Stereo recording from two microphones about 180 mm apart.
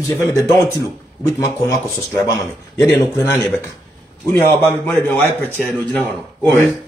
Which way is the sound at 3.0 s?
15° left (ahead or behind).